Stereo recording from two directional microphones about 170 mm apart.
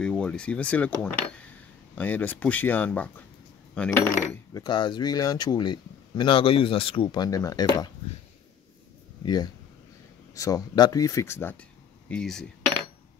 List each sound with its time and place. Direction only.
0.0 s speech: 5° left (ahead or behind)
3.7 s cutlery: 5° left (ahead or behind)
4.2 s speech: 15° left (ahead or behind)
4.6 s speech: 25° left (ahead or behind)
9.2 s speech: 25° left (ahead or behind); by 12.4 s 5° left (ahead or behind)